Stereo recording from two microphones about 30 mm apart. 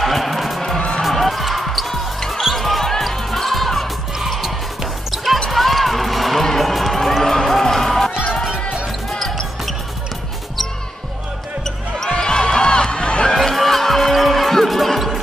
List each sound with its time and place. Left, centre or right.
0.0 s music: centre
0.7 s music: left
1.0 s basketball bounce: centre
2.1 s basketball bounce: centre
3.0 s music: centre
5.1 s basketball bounce: centre
5.5 s music: centre
12.2 s music: left
13.3 s music: centre